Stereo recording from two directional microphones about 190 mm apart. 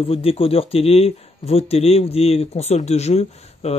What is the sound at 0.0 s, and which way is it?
Speech, 30° left (ahead or behind).